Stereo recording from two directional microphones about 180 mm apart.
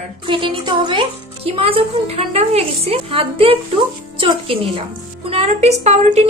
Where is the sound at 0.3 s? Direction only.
30° right (ahead or behind).